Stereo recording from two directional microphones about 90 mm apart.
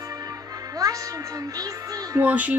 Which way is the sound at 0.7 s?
40° right (ahead or behind).